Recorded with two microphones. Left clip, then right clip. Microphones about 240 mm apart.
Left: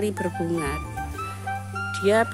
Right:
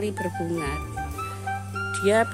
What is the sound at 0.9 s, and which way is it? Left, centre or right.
Music, centre.